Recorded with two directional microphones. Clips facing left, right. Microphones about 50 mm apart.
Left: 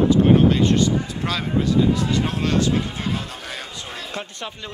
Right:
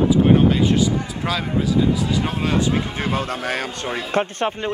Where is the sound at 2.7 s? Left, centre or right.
Right.